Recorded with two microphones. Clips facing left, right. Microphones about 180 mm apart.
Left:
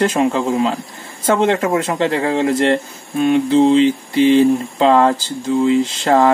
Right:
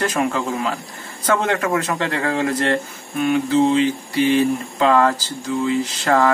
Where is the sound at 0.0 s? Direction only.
25° left (ahead or behind).